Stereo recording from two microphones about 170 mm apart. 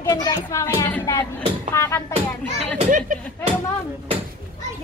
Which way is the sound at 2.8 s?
50° right (ahead or behind).